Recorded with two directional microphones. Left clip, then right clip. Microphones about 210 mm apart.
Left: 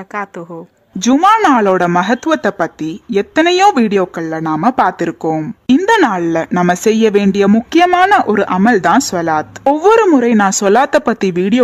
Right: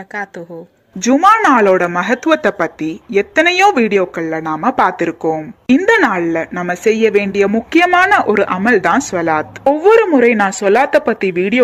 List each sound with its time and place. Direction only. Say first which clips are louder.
0.9 s speech: even; 30° left (ahead or behind)